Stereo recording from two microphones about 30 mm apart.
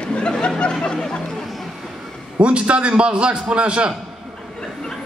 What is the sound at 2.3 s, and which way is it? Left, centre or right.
Speech, right.